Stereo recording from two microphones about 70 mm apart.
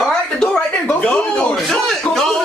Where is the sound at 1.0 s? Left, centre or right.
Centre.